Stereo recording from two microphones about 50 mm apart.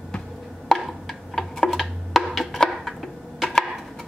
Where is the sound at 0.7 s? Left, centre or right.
Centre.